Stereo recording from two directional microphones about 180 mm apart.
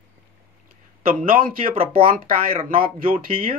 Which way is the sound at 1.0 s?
55° right (ahead or behind).